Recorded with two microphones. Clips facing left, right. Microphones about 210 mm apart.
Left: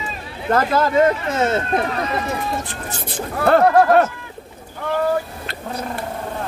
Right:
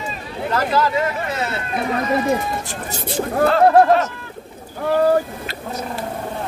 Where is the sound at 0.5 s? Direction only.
50° left (ahead or behind).